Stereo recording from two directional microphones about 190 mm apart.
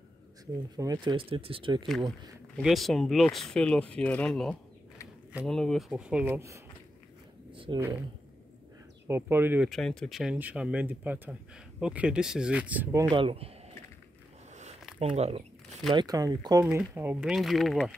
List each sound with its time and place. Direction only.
0.7 s speech: 20° right (ahead or behind)
1.9 s speech: centre (ahead or behind)
7.5 s a sound: 25° right (ahead or behind)
9.0 s speech: 10° right (ahead or behind)
9.7 s speech: 5° left (ahead or behind)
13.1 s speech: 30° right (ahead or behind)
14.5 s a sound: 35° right (ahead or behind)
15.0 s speech: 35° right (ahead or behind)
15.9 s speech: 20° right (ahead or behind); by 17.9 s centre (ahead or behind)